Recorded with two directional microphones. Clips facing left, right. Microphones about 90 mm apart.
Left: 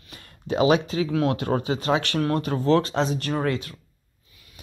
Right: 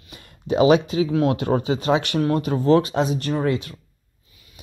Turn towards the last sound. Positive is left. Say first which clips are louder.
# right 3 dB
turn(degrees=-15)  # may be behind; listen again after turning